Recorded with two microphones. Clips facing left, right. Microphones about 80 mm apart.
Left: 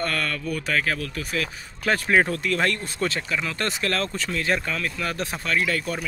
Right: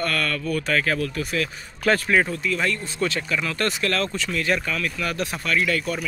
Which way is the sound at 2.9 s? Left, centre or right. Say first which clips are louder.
Right 1 dB; left.